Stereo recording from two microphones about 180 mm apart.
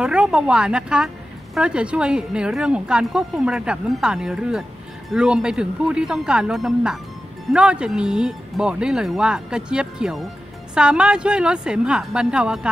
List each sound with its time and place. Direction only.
0.0 s a woman's voice: 5° right (ahead or behind)